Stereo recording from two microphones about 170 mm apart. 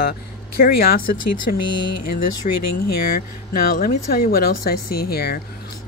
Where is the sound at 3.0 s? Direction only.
60° left (ahead or behind).